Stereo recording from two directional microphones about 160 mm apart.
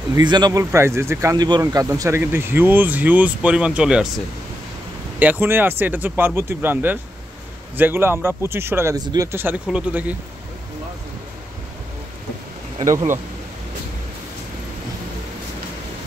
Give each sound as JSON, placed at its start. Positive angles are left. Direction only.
{"t": 0.1, "sound": "speech", "side_deg": -25}
{"t": 5.2, "sound": "speech", "side_deg": -10}
{"t": 12.7, "sound": "speech", "side_deg": -25}